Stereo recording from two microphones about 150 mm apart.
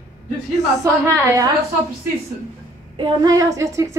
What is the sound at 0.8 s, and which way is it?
Speech, 20° right (ahead or behind).